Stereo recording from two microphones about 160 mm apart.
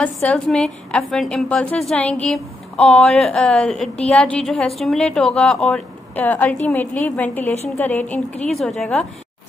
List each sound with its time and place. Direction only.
0.0 s a woman's voice: 5° left (ahead or behind)
7.5 s a woman's voice: 45° left (ahead or behind)
7.8 s a woman's voice: 10° left (ahead or behind)